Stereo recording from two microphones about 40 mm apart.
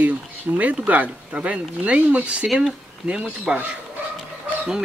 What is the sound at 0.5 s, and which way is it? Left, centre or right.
Speech, right.